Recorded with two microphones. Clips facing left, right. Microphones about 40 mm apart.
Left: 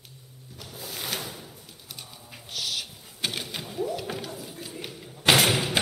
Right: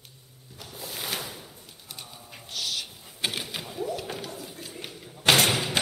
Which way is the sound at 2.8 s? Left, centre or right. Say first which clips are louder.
Right 1 dB; centre.